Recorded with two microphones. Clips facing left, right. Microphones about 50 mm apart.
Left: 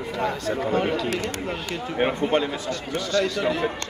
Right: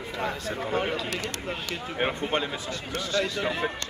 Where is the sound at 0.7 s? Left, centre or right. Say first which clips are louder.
Left 3 dB; centre.